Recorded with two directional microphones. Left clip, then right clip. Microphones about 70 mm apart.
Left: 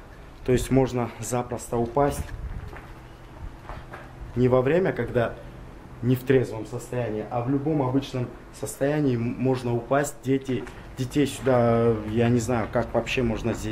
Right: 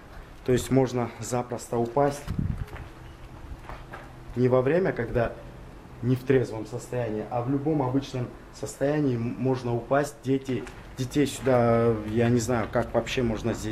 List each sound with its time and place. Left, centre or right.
0.5 s speech: centre
4.4 s speech: centre
6.9 s speech: centre
10.3 s speech: centre